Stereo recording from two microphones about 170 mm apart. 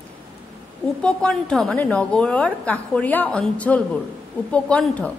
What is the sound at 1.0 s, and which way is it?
A woman's voice, 5° left (ahead or behind).